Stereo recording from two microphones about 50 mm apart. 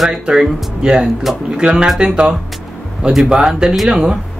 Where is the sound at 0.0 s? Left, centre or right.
Centre.